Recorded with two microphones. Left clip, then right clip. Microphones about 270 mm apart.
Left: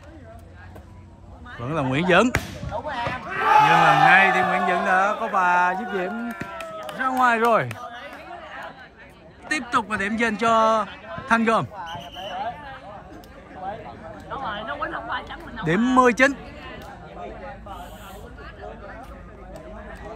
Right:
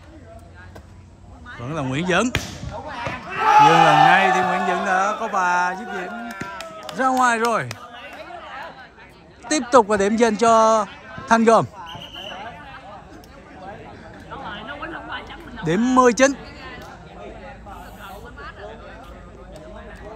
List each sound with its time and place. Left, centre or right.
1.5 s speech: centre
3.3 s a sound: centre
6.2 s chop: centre
6.9 s speech: centre
7.9 s chatter: centre
9.5 s a man's voice: centre
11.8 s basketball bounce: centre
14.3 s a sound: centre
15.6 s a sound: centre